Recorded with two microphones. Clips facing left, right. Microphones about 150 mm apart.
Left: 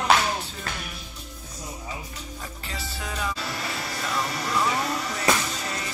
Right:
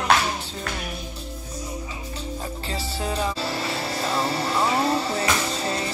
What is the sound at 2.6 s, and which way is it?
Music, 30° right (ahead or behind).